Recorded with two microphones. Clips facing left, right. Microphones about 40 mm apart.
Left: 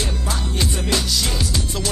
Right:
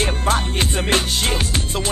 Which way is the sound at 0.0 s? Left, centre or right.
Right.